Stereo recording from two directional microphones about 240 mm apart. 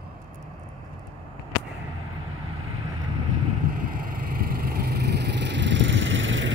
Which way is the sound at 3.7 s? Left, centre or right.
Right.